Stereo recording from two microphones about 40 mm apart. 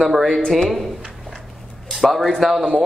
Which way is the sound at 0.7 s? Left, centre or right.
Centre.